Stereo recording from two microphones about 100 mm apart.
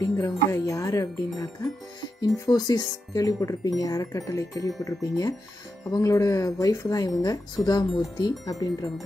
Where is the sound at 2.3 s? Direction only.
35° left (ahead or behind).